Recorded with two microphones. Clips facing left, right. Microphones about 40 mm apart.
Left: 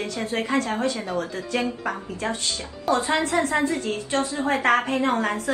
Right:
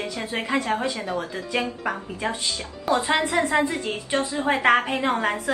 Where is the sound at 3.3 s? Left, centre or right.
Right.